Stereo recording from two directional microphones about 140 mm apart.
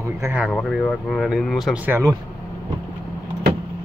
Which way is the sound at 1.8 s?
20° right (ahead or behind).